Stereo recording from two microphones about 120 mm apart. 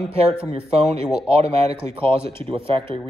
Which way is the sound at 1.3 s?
60° right (ahead or behind).